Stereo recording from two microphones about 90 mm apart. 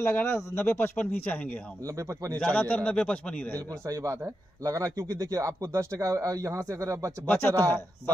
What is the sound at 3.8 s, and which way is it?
Speech, 40° right (ahead or behind).